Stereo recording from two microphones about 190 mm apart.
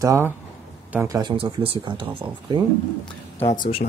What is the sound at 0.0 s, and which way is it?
Speech, 15° right (ahead or behind).